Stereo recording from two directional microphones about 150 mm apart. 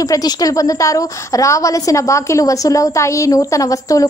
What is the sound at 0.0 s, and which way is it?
A woman's voice, 25° left (ahead or behind).